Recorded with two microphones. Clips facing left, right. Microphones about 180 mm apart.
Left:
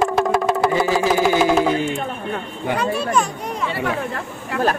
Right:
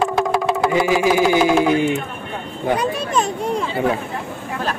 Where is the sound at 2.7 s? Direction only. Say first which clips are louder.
Left 2 dB; 20° right (ahead or behind).